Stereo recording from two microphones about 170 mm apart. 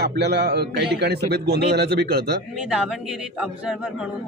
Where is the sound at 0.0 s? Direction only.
75° right (ahead or behind).